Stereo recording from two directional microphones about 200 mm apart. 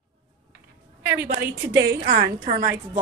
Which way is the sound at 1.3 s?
55° right (ahead or behind).